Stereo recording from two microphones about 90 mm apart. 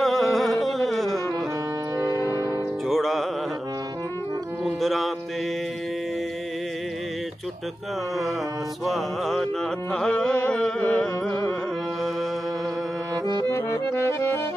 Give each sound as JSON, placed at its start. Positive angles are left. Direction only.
{"t": 0.0, "sound": "music", "side_deg": 5}
{"t": 2.0, "sound": "music", "side_deg": -40}
{"t": 2.9, "sound": "music", "side_deg": 0}
{"t": 4.6, "sound": "music", "side_deg": 0}
{"t": 8.8, "sound": "music", "side_deg": 0}
{"t": 13.1, "sound": "music", "side_deg": -50}
{"t": 13.5, "sound": "music", "side_deg": 30}